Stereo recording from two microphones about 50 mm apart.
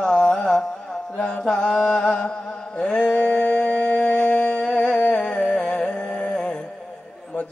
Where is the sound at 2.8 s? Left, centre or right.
Centre.